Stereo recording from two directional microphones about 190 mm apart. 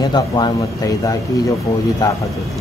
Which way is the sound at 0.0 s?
20° left (ahead or behind).